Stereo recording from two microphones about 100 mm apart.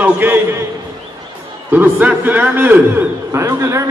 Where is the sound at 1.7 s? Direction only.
15° right (ahead or behind).